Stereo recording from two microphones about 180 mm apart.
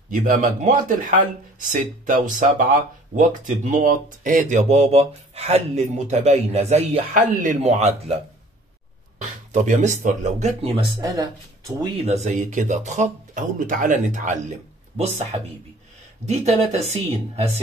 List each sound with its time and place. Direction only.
0.1 s speech: 45° right (ahead or behind)
9.5 s speech: 45° right (ahead or behind); by 11.9 s 20° right (ahead or behind)
12.0 s speech: 40° right (ahead or behind)
16.7 s speech: 40° right (ahead or behind)